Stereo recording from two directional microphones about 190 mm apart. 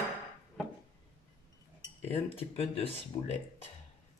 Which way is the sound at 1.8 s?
30° left (ahead or behind).